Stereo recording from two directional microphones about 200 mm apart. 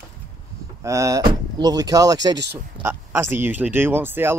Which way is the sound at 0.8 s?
15° right (ahead or behind).